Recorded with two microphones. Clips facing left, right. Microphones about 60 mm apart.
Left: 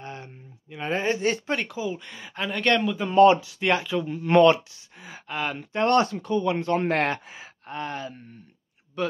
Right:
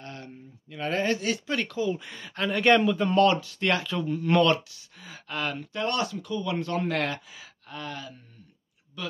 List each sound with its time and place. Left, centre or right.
0.0 s a sound: left
1.2 s speech: left
1.6 s speech: centre
2.6 s a man's voice: centre
3.1 s speech: centre
4.3 s speech: left
5.0 s a sound: left
5.8 s speech: left